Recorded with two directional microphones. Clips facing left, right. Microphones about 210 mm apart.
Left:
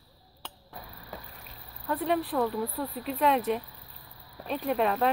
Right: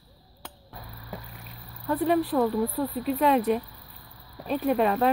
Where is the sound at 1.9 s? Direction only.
Centre (ahead or behind).